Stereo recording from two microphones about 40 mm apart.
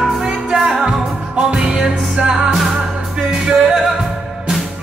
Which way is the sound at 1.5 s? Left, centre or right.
Right.